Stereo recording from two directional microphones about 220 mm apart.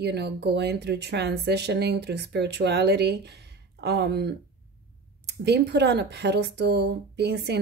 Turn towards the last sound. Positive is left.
turn(degrees=-50)  # may be behind; listen again after turning